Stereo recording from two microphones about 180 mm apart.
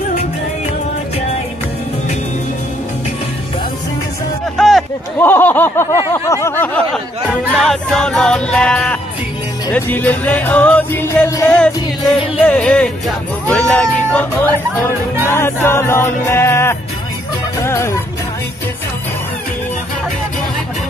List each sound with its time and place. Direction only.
4.6 s run: centre (ahead or behind)
5.2 s a sound: 10° left (ahead or behind)
7.6 s music: centre (ahead or behind)
9.7 s speech: 10° left (ahead or behind)
11.5 s music: 5° left (ahead or behind)
12.4 s speech: 5° left (ahead or behind)